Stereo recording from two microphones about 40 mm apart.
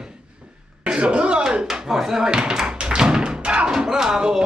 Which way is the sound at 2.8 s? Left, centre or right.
Right.